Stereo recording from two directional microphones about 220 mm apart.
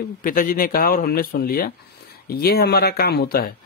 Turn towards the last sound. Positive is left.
turn(degrees=45)  # may be behind; listen again after turning